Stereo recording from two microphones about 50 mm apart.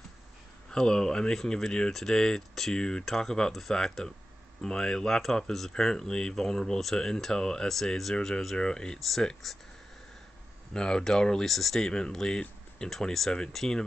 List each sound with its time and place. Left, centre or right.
0.7 s speech: centre
10.7 s speech: centre